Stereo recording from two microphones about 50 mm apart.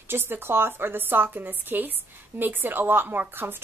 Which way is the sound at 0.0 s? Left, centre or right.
Right.